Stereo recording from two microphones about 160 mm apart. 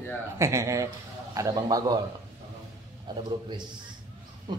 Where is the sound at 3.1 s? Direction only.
25° right (ahead or behind).